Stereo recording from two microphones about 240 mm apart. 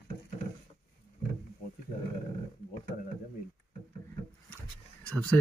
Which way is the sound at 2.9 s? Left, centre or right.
Left.